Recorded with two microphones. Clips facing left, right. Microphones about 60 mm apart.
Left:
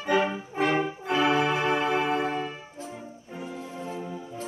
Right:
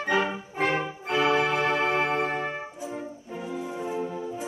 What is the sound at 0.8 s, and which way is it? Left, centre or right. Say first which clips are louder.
Brass instrument: left 1 dB; centre.